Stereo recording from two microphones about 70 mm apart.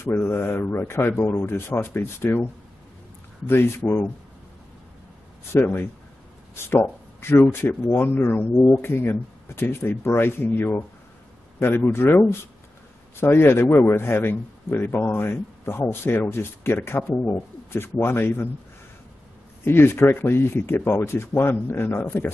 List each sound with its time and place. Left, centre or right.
0.2 s a man's voice: left
3.4 s a man's voice: left
5.5 s a man's voice: left
19.6 s a man's voice: left